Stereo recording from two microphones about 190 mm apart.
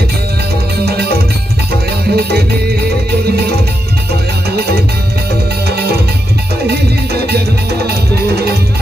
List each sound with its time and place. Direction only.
0.7 s music: 55° right (ahead or behind)
2.1 s music: 55° right (ahead or behind)
4.5 s music: 55° right (ahead or behind)
7.2 s music: 55° right (ahead or behind)